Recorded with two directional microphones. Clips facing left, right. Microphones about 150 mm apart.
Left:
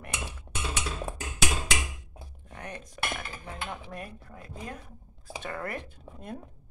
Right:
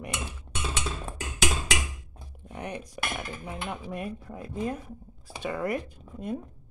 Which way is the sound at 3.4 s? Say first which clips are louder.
Right 2 dB; 10° right (ahead or behind).